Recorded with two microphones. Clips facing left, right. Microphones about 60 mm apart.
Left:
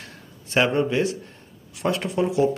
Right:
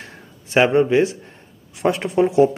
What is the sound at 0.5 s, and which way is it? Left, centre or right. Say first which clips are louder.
A man's voice: right 6 dB; right.